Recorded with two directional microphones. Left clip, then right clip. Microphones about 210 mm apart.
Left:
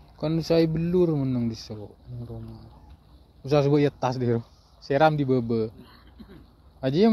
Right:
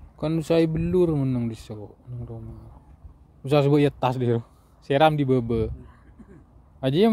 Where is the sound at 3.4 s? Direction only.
25° right (ahead or behind).